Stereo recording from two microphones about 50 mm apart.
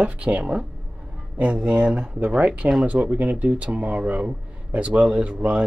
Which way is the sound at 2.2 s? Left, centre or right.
Right.